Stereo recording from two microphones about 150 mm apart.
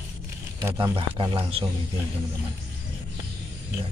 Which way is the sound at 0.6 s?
20° right (ahead or behind).